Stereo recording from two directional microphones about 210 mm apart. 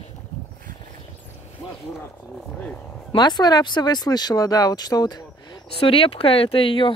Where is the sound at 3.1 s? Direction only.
20° left (ahead or behind).